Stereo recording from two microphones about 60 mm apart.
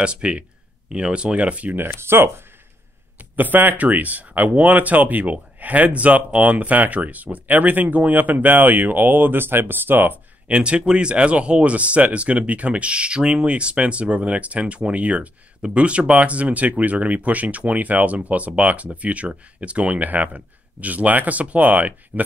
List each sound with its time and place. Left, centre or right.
0.0 s speech: centre
1.8 s speech: right
3.2 s speech: right
10.5 s speech: centre